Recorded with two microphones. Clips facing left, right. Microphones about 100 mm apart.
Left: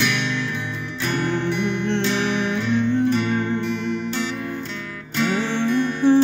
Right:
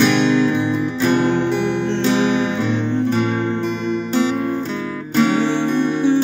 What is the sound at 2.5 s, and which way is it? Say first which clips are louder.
Music: right 1 dB; 30° right (ahead or behind).